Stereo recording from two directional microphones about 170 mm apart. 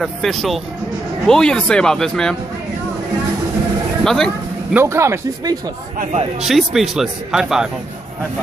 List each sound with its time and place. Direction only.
0.0 s speech: centre (ahead or behind)
4.0 s speech: centre (ahead or behind)
4.7 s speech: 15° right (ahead or behind)
6.4 s speech: centre (ahead or behind)